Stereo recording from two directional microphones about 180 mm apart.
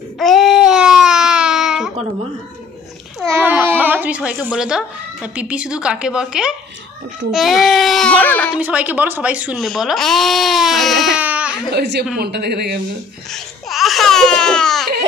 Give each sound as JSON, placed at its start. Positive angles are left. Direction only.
{"t": 0.2, "sound": "baby cry", "side_deg": 0}
{"t": 3.3, "sound": "a child's voice", "side_deg": -10}
{"t": 8.5, "sound": "speech", "side_deg": -10}
{"t": 11.7, "sound": "a woman's voice", "side_deg": -65}
{"t": 13.3, "sound": "a sound", "side_deg": 0}